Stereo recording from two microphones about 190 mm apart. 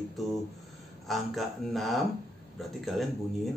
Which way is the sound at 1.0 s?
Centre (ahead or behind).